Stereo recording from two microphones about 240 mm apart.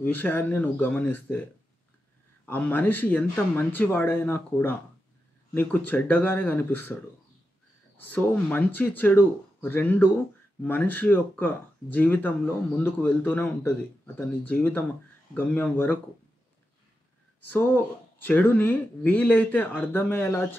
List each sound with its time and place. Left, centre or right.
0.0 s speech: centre
2.4 s speech: centre
8.0 s speech: centre
17.5 s speech: centre